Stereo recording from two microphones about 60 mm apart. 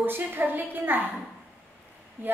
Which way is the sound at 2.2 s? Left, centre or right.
Right.